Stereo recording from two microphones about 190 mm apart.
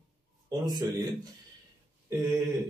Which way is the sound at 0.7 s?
20° right (ahead or behind).